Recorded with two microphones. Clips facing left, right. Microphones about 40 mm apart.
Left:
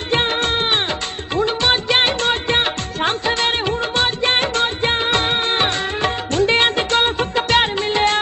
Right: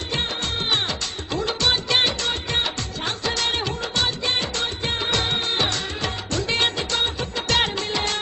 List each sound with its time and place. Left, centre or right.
0.1 s music: left
1.9 s music of bollywood: left
7.4 s music of bollywood: left